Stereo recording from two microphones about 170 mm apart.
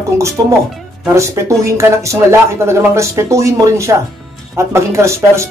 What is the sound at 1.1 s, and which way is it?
Speech, 15° right (ahead or behind).